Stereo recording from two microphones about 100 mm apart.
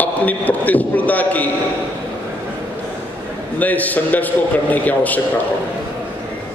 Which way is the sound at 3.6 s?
15° left (ahead or behind).